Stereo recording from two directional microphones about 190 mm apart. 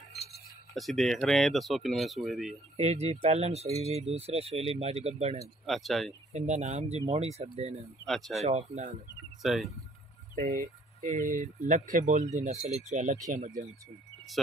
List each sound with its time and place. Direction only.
0.7 s speech: centre (ahead or behind)
2.8 s speech: 35° right (ahead or behind)
5.7 s speech: centre (ahead or behind)
6.3 s speech: 35° right (ahead or behind)
8.0 s speech: centre (ahead or behind)
8.4 s speech: 35° right (ahead or behind)
9.4 s speech: centre (ahead or behind)
10.3 s speech: 40° right (ahead or behind)